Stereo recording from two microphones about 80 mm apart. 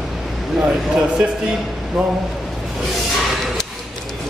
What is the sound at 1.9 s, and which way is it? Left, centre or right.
Speech, centre.